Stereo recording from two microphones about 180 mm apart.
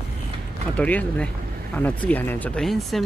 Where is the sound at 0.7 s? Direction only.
10° left (ahead or behind).